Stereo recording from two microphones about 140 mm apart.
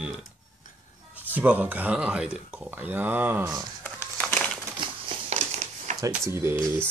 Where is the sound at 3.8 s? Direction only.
15° left (ahead or behind).